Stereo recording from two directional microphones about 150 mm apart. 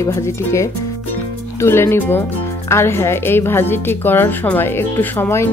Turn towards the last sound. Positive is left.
turn(degrees=15)  # may be behind; listen again after turning